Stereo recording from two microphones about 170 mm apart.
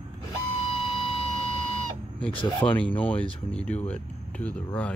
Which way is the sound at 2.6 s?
10° left (ahead or behind).